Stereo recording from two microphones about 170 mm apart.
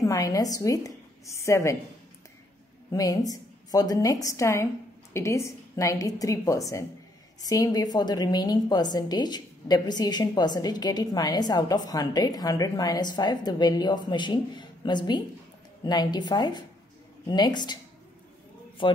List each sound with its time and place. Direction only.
0.0 s a woman's voice: 20° left (ahead or behind)
2.9 s a woman's voice: 20° left (ahead or behind)
18.8 s a woman's voice: 30° left (ahead or behind)